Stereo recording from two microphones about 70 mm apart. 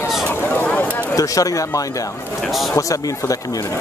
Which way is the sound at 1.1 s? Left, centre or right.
Left.